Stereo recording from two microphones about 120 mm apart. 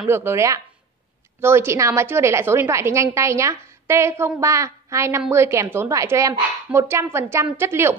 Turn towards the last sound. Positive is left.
turn(degrees=-20)  # may be behind; listen again after turning